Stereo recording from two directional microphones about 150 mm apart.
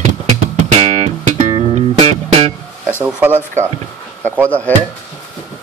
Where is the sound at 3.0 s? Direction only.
10° right (ahead or behind).